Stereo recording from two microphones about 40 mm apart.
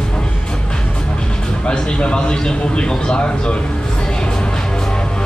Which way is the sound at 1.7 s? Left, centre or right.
Left.